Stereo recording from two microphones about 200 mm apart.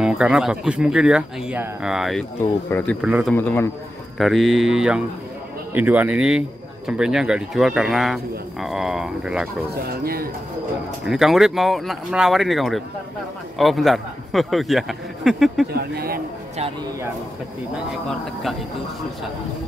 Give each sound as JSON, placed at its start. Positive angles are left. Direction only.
{"t": 0.0, "sound": "speech", "side_deg": -5}
{"t": 3.3, "sound": "a man's voice", "side_deg": 10}
{"t": 4.2, "sound": "speech", "side_deg": 0}
{"t": 9.8, "sound": "speech", "side_deg": -50}
{"t": 11.1, "sound": "speech", "side_deg": 0}
{"t": 15.7, "sound": "speech", "side_deg": -50}